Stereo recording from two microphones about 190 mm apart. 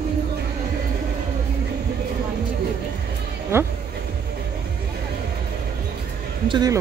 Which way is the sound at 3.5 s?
15° right (ahead or behind).